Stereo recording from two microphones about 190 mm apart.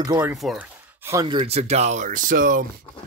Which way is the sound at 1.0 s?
20° right (ahead or behind).